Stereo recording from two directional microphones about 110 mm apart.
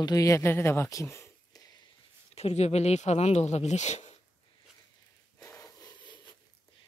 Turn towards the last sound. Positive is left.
turn(degrees=40)  # may be behind; listen again after turning